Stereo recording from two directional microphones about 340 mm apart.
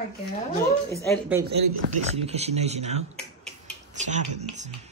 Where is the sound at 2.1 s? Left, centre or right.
Centre.